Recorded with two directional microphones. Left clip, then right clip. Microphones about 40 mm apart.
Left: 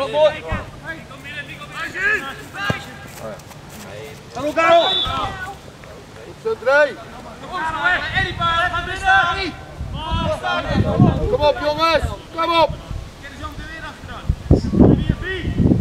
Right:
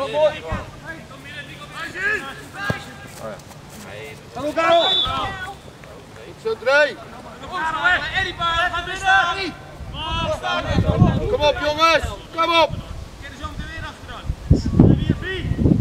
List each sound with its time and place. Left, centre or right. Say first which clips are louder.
0.2 s speech: left 3 dB; centre
1.3 s a sound: left 4 dB; centre
4.4 s a man's voice: left 3 dB; centre
6.4 s speech: left 1 dB; right
7.4 s speech: even; centre
8.0 s a man's voice: left 2 dB; centre
9.9 s a sound: even; right
10.3 s speech: left 4 dB; centre
11.3 s speech: left 1 dB; right
13.4 s a sound: left 1 dB; centre